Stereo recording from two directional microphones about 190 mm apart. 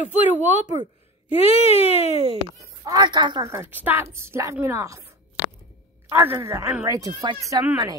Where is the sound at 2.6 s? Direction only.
20° right (ahead or behind).